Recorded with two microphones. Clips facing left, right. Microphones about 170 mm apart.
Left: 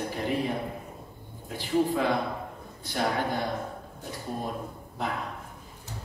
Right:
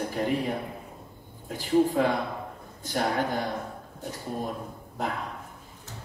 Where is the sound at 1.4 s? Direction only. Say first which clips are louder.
Right 3 dB; 45° right (ahead or behind).